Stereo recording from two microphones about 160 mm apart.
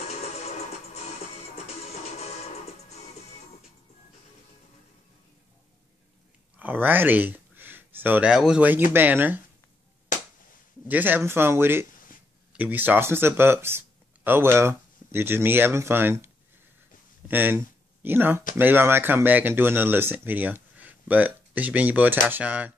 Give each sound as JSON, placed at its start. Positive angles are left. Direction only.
{"t": 1.9, "sound": "music", "side_deg": 45}
{"t": 6.6, "sound": "speech", "side_deg": -10}
{"t": 10.9, "sound": "speech", "side_deg": -10}
{"t": 17.3, "sound": "speech", "side_deg": -10}